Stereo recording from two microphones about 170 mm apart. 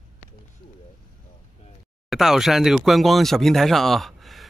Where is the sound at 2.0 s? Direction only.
Centre (ahead or behind).